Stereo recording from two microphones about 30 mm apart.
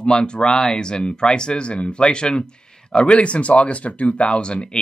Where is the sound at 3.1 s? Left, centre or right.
Left.